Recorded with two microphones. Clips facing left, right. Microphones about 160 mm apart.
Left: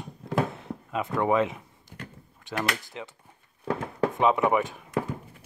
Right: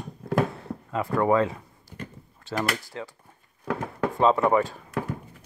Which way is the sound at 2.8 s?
20° left (ahead or behind).